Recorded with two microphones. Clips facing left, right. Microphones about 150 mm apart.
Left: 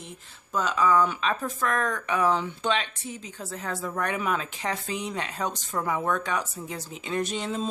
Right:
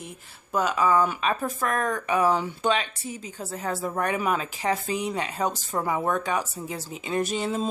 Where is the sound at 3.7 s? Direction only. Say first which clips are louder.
Right 2 dB; 25° right (ahead or behind).